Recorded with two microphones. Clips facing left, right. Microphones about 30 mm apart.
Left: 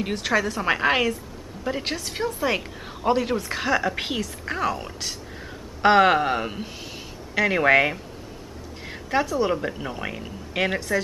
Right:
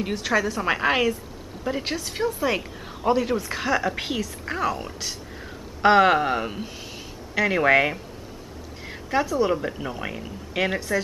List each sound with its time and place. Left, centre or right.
0.0 s a woman's voice: centre